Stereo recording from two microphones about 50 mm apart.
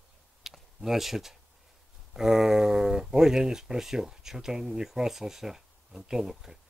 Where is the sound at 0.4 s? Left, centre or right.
Centre.